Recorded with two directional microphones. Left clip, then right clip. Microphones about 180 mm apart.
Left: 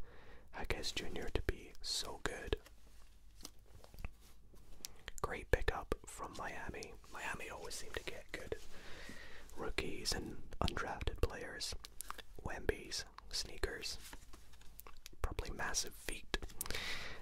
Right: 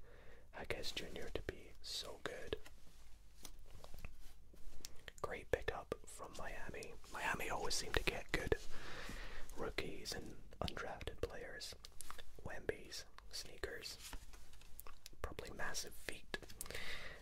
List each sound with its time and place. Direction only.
0.1 s whispering: 30° left (ahead or behind); by 2.6 s 45° left (ahead or behind)
4.8 s whispering: 40° left (ahead or behind)
7.1 s whispering: 10° right (ahead or behind)
7.3 s whispering: 25° right (ahead or behind)
7.6 s whispering: 40° right (ahead or behind)
9.8 s whispering: 35° left (ahead or behind)
14.9 s whispering: 30° left (ahead or behind)